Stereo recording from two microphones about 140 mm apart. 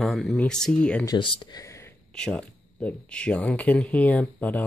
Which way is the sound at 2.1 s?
5° left (ahead or behind).